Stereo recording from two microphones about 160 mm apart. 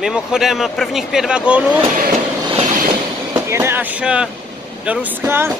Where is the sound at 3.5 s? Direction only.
15° right (ahead or behind).